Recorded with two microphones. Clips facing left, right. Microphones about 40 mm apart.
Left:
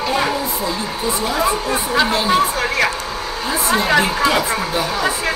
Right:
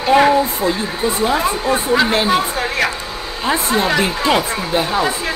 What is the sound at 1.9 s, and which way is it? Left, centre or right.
Speech, centre.